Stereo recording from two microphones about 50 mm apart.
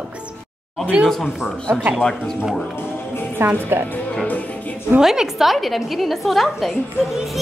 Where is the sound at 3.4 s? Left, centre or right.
Right.